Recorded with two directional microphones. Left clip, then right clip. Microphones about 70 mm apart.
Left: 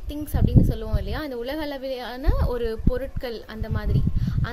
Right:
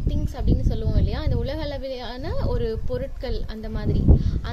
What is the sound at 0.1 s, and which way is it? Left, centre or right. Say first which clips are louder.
A woman's voice: left 4 dB; left.